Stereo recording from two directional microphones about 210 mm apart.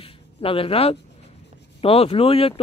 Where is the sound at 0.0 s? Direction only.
25° left (ahead or behind).